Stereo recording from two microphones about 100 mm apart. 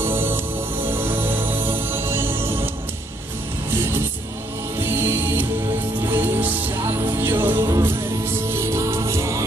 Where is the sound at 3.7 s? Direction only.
25° right (ahead or behind).